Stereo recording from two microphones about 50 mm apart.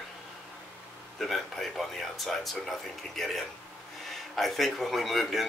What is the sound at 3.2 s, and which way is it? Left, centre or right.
Speech, centre.